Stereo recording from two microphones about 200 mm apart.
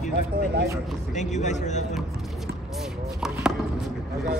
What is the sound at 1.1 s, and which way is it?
Speech, 35° left (ahead or behind).